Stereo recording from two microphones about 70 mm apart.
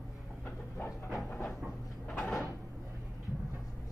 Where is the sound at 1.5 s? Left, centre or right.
Centre.